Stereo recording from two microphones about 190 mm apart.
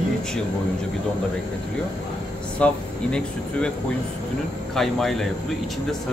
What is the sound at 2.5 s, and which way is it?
Speech, 5° left (ahead or behind).